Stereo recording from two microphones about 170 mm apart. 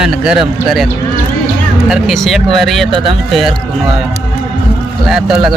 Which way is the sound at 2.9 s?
30° right (ahead or behind).